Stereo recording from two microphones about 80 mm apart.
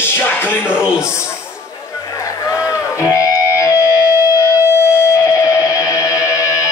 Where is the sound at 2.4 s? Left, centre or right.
Left.